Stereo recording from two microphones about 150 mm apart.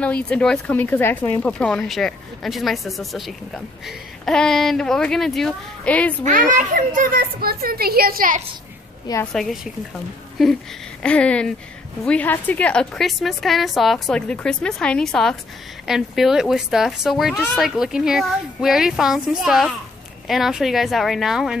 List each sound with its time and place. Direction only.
0.0 s speech: 5° left (ahead or behind)
6.2 s a child's voice: 60° right (ahead or behind)
9.2 s speech: centre (ahead or behind)
11.0 s speech: 10° left (ahead or behind)